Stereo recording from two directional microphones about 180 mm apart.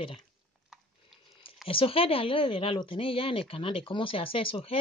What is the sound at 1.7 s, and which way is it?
Speech, 30° left (ahead or behind).